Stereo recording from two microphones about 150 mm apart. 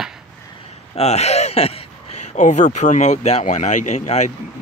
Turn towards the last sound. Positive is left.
turn(degrees=50)  # may be behind; listen again after turning